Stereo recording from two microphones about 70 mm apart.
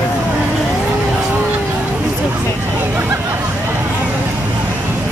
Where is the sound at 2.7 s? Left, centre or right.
Right.